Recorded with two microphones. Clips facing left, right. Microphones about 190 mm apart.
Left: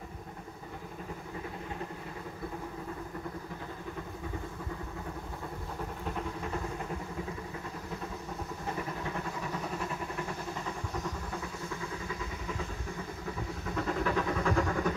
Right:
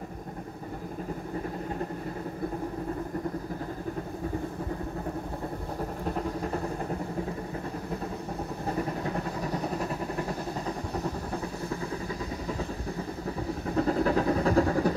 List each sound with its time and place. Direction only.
6.0 s vehicle: 40° right (ahead or behind)
8.6 s vehicle: 35° right (ahead or behind)
13.7 s vehicle: 35° right (ahead or behind)